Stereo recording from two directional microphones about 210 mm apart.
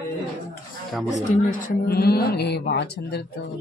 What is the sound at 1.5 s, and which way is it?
Speech, 45° left (ahead or behind).